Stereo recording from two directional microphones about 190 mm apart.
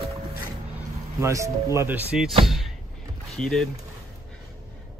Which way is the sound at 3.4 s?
5° left (ahead or behind).